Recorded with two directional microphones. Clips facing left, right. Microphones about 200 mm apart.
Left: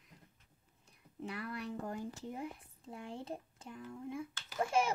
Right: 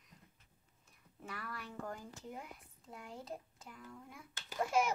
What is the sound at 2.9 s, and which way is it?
Speech, 30° left (ahead or behind).